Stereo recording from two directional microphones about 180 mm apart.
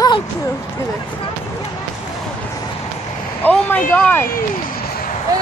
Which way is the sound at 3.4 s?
10° left (ahead or behind).